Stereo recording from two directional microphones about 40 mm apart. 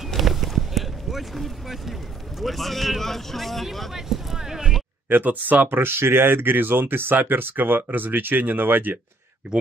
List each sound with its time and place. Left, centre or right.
0.1 s boat: centre
2.4 s speech: centre
3.9 s a sound: centre
5.1 s speech: right
5.7 s speech: right